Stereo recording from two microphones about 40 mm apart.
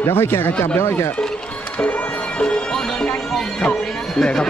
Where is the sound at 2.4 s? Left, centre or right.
Centre.